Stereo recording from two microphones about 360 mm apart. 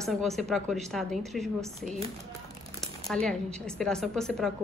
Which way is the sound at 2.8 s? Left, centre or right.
Centre.